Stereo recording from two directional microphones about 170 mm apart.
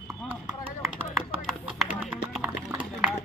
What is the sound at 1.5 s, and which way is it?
Music, 5° right (ahead or behind).